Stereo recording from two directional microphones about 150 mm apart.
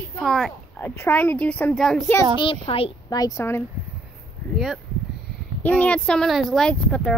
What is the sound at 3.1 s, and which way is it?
Speech, 20° left (ahead or behind).